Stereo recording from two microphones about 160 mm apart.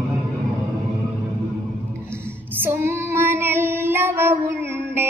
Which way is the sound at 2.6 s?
15° right (ahead or behind).